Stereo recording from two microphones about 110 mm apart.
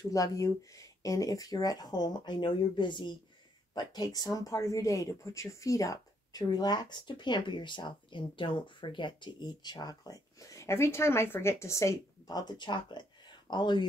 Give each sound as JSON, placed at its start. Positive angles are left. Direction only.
{"t": 0.1, "sound": "speech", "side_deg": 30}